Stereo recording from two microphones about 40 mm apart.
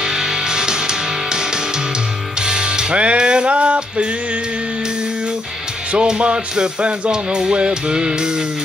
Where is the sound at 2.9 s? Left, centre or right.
Right.